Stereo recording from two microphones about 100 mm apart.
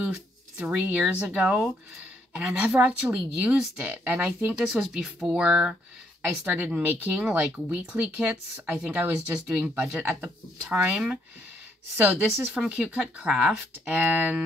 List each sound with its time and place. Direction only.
0.0 s speech: 10° right (ahead or behind)
4.6 s speech: 5° right (ahead or behind)
6.2 s speech: 15° right (ahead or behind)
7.2 s speech: 10° right (ahead or behind)